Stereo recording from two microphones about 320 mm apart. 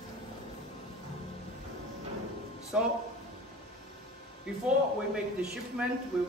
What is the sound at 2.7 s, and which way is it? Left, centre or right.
Speech, centre.